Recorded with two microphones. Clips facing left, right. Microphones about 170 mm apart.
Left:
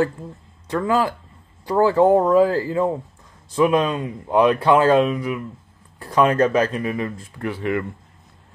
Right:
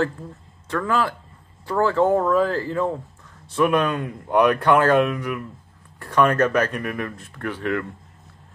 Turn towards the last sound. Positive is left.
turn(degrees=10)  # may be behind; listen again after turning